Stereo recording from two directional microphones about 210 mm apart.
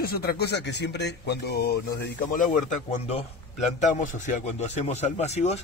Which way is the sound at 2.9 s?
30° left (ahead or behind).